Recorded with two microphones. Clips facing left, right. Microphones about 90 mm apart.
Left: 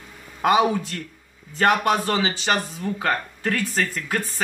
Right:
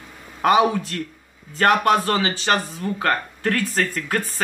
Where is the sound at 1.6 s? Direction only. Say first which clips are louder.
Right 2 dB; 10° left (ahead or behind).